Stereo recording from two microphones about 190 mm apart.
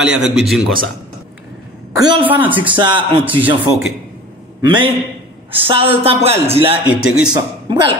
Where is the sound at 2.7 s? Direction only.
25° right (ahead or behind).